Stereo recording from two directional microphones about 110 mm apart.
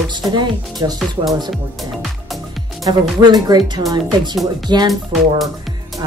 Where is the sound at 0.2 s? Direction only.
35° right (ahead or behind).